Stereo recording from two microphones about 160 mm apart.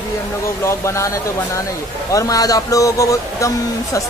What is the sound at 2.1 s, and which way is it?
Speech, 20° left (ahead or behind).